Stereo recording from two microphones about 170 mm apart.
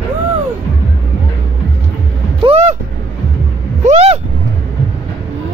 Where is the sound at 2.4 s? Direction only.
35° right (ahead or behind).